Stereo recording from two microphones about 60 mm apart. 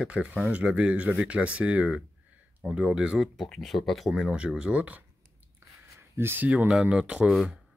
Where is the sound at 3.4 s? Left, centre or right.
Centre.